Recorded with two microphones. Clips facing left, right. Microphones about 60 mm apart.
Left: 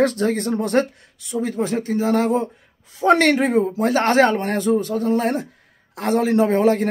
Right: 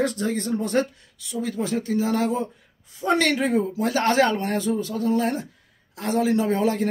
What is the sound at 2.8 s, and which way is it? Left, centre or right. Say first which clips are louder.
Speech: left 8 dB; left.